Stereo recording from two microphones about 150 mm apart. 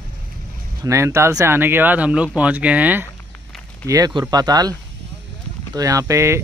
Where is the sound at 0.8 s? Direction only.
20° right (ahead or behind).